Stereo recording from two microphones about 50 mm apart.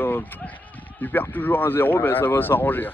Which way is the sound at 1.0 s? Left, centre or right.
Left.